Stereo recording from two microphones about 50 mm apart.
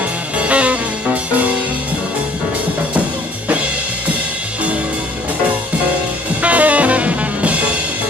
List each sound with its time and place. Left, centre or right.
0.4 s music: right
6.4 s music: right